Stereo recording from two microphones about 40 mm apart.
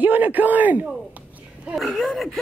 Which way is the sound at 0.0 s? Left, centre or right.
Right.